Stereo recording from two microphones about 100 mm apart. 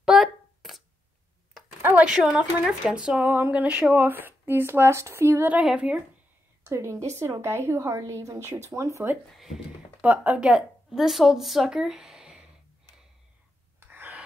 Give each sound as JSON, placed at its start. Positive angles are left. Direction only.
{"t": 0.0, "sound": "a sound", "side_deg": -5}
{"t": 1.8, "sound": "a sound", "side_deg": -20}
{"t": 2.0, "sound": "speech", "side_deg": -5}
{"t": 5.5, "sound": "speech", "side_deg": -10}
{"t": 6.6, "sound": "speech", "side_deg": -30}
{"t": 9.3, "sound": "speech", "side_deg": 0}
{"t": 10.0, "sound": "speech", "side_deg": -15}
{"t": 13.7, "sound": "gasp", "side_deg": -20}